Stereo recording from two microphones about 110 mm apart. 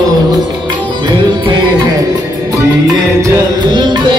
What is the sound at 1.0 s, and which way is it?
Music, 40° right (ahead or behind).